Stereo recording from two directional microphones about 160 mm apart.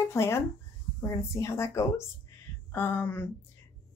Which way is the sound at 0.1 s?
15° left (ahead or behind).